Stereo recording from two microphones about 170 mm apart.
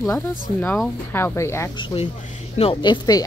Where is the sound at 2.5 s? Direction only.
30° left (ahead or behind).